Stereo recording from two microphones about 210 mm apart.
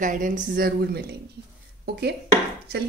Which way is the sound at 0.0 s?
40° right (ahead or behind).